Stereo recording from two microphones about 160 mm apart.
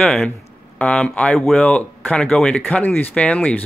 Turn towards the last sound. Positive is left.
turn(degrees=10)  # may be behind; listen again after turning